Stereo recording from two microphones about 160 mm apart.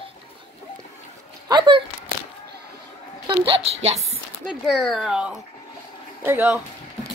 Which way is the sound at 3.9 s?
Centre (ahead or behind).